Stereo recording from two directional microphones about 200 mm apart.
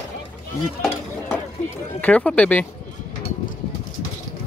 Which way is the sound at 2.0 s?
5° left (ahead or behind).